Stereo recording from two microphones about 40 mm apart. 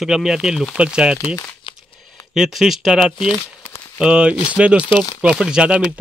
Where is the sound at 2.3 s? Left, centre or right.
Centre.